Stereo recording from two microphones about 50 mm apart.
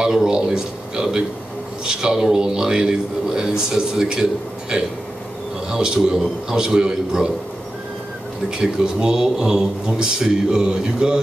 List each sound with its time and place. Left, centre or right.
0.0 s a man's voice: centre
8.5 s a man's voice: centre